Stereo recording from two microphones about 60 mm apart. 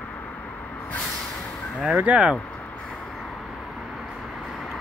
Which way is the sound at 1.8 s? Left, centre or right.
Right.